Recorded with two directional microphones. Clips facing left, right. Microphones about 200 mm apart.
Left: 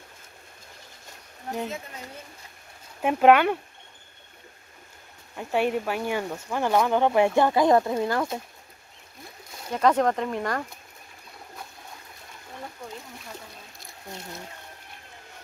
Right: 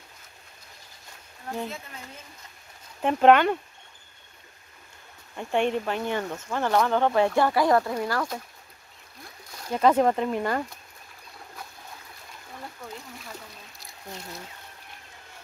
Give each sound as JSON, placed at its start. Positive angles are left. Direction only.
{"t": 1.5, "sound": "speech", "side_deg": 15}
{"t": 5.3, "sound": "speech", "side_deg": 5}
{"t": 9.7, "sound": "speech", "side_deg": -5}